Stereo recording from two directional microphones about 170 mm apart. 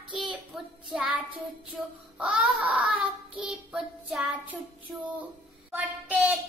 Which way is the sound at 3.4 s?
5° right (ahead or behind).